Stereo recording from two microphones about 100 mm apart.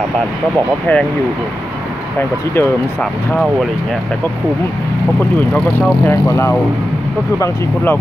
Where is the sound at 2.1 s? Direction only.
25° left (ahead or behind).